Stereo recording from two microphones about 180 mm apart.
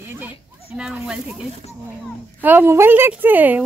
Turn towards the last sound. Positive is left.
turn(degrees=-10)  # may be behind; listen again after turning